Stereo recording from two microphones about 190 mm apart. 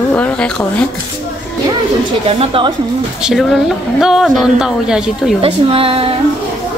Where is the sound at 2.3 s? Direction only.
30° right (ahead or behind).